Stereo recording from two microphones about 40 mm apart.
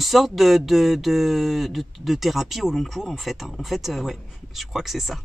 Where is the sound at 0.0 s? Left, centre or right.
Centre.